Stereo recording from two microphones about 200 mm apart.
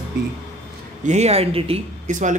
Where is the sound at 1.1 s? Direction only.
30° right (ahead or behind).